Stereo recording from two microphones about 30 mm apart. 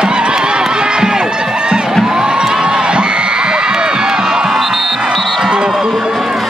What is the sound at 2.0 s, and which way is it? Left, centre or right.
Crowd, right.